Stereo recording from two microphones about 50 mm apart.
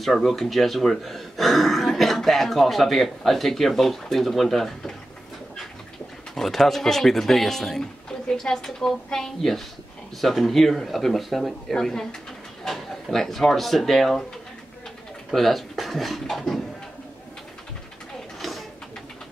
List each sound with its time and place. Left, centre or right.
0.0 s speech: centre
6.3 s speech: centre
15.3 s speech: centre
18.4 s a sound: centre